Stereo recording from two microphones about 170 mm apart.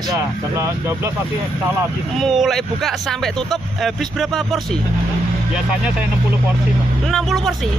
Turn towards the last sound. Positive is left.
turn(degrees=0)  # may be behind; listen again after turning